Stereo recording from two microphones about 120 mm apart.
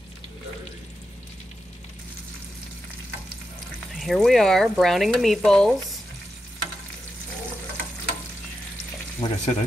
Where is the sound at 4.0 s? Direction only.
Centre (ahead or behind).